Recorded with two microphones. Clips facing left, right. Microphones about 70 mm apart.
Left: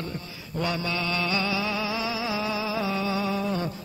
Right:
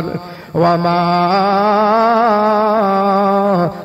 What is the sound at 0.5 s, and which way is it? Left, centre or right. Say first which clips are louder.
Mantra: right 16 dB; right.